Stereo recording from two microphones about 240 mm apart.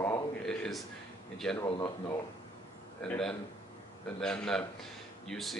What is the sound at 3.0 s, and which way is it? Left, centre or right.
Speech, centre.